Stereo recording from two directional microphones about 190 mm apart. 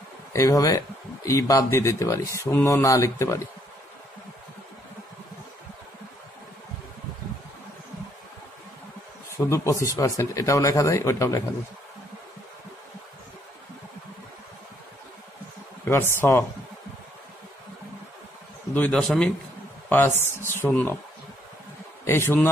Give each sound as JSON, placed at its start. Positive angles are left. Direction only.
{"t": 0.3, "sound": "speech", "side_deg": 15}
{"t": 9.5, "sound": "speech", "side_deg": 15}
{"t": 15.9, "sound": "speech", "side_deg": 10}
{"t": 18.8, "sound": "a man's voice", "side_deg": 5}
{"t": 22.0, "sound": "speech", "side_deg": 15}